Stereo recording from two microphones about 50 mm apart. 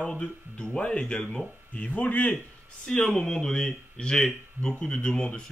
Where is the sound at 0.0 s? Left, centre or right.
Centre.